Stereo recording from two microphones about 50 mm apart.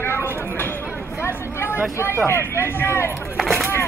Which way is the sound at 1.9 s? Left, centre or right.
Left.